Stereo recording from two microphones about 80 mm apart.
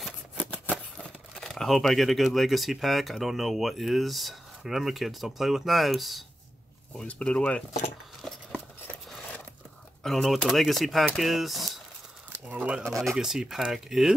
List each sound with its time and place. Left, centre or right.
0.9 s speech: centre
7.1 s speech: centre
8.2 s a sound: centre
10.0 s speech: centre
12.4 s speech: centre
12.9 s speech: centre